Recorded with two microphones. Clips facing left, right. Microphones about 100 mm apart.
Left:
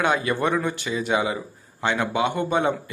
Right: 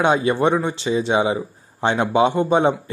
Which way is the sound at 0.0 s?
25° right (ahead or behind).